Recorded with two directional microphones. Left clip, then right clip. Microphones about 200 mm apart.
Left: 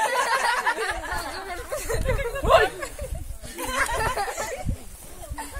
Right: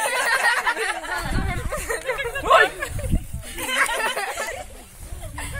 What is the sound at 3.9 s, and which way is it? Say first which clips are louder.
Chatter: right 1 dB; 20° right (ahead or behind).